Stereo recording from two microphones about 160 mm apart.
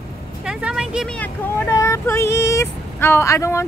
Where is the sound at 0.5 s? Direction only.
5° right (ahead or behind).